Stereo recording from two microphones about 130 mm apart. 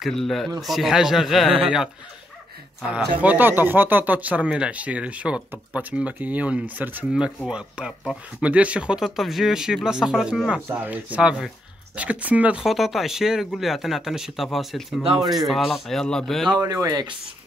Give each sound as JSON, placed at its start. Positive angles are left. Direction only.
{"t": 0.0, "sound": "speech", "side_deg": 0}
{"t": 3.2, "sound": "speech", "side_deg": -15}
{"t": 16.4, "sound": "speech", "side_deg": -30}